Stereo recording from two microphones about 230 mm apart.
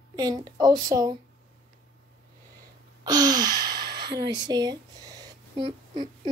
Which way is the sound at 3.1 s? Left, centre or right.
Centre.